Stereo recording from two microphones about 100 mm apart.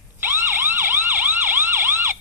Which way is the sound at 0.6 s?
20° right (ahead or behind).